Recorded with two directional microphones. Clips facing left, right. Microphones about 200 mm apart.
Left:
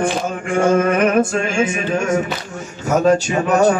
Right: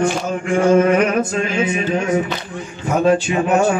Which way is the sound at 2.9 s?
40° left (ahead or behind).